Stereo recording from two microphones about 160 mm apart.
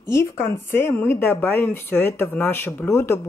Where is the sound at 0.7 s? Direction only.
15° left (ahead or behind).